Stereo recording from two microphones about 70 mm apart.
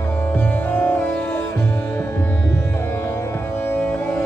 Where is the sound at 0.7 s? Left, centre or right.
Left.